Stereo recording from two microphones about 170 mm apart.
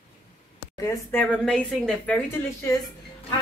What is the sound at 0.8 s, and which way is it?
Speech, 15° left (ahead or behind).